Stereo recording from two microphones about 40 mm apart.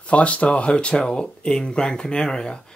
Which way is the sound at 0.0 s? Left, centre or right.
Left.